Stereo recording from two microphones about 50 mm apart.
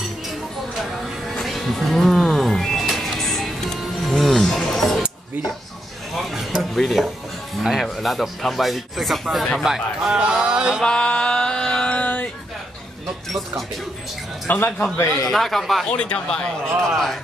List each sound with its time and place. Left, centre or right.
1.4 s music: centre
6.1 s speech: centre
9.7 s a sound: centre
10.8 s music: centre
11.9 s a sound: left
14.5 s a man's voice: left
15.3 s speech: centre
15.9 s speech: left
16.9 s speech: centre